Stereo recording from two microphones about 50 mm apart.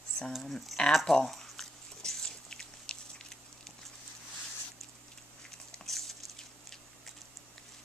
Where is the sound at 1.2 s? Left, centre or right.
Centre.